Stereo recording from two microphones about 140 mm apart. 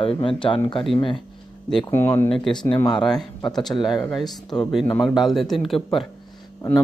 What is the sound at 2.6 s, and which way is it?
Speech, 35° left (ahead or behind).